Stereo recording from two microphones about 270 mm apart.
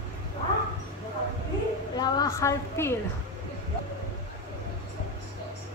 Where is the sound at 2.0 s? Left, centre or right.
Centre.